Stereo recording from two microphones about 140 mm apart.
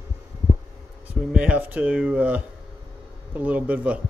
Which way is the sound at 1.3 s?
10° right (ahead or behind).